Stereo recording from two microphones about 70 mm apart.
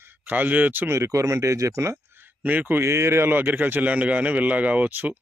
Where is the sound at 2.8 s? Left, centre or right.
Right.